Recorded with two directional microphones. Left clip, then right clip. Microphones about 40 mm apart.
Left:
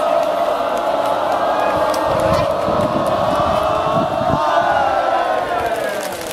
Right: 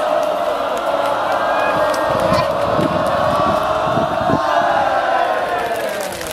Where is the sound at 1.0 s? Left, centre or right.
Right.